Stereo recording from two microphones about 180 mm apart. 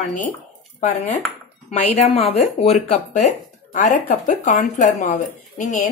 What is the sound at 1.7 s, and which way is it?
Speech, 40° left (ahead or behind).